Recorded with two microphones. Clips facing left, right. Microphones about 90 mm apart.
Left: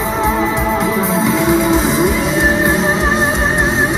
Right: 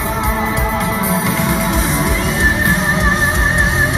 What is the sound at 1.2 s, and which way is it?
Music, 15° left (ahead or behind).